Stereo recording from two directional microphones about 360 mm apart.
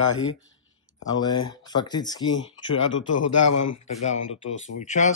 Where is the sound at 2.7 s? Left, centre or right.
Left.